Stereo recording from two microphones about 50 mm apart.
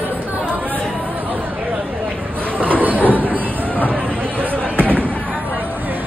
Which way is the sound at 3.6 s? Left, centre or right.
Left.